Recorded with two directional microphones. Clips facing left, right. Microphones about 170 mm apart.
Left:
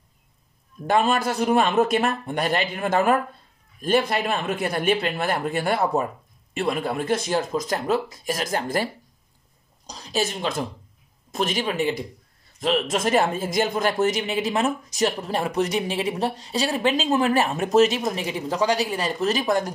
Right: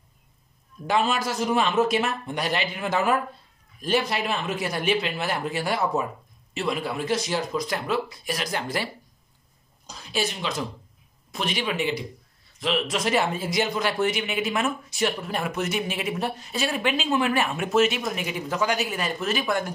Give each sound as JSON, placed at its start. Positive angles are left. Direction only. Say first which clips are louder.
{"t": 0.8, "sound": "speech", "louder": "left 3 dB", "side_deg": 55}